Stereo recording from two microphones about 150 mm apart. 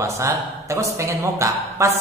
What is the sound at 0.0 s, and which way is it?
A woman's voice, 20° right (ahead or behind).